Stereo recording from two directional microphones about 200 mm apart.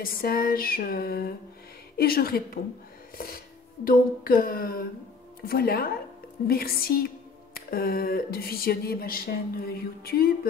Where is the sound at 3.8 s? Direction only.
45° left (ahead or behind).